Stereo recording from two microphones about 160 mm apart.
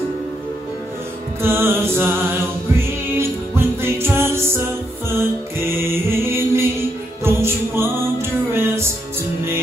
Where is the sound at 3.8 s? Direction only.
15° right (ahead or behind).